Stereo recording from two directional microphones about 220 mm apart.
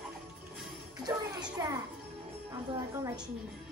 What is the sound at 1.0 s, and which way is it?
Music, 20° right (ahead or behind).